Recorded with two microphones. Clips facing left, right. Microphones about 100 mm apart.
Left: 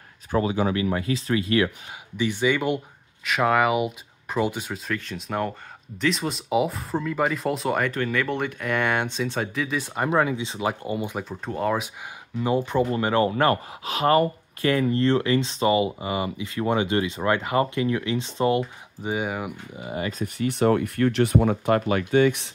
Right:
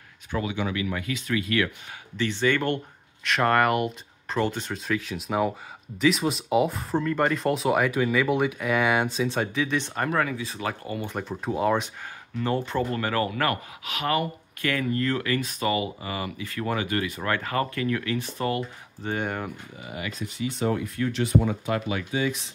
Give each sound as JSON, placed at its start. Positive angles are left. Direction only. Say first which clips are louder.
{"t": 0.3, "sound": "speech", "louder": "left 5 dB", "side_deg": 35}
{"t": 2.1, "sound": "speech", "louder": "left 1 dB", "side_deg": 10}
{"t": 10.0, "sound": "speech", "louder": "left 4 dB", "side_deg": 20}
{"t": 11.1, "sound": "speech", "louder": "right 1 dB", "side_deg": 0}
{"t": 12.4, "sound": "speech", "louder": "left 4 dB", "side_deg": 15}
{"t": 19.0, "sound": "speech", "louder": "left 2 dB", "side_deg": 5}
{"t": 19.7, "sound": "speech", "louder": "left 6 dB", "side_deg": 25}
{"t": 20.1, "sound": "speech", "louder": "left 4 dB", "side_deg": 40}
{"t": 20.4, "sound": "speech", "louder": "left 6 dB", "side_deg": 65}